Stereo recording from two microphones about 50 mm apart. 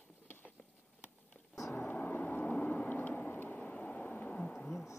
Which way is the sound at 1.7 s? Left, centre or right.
Left.